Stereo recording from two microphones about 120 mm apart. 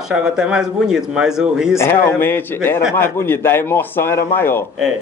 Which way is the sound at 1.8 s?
20° left (ahead or behind).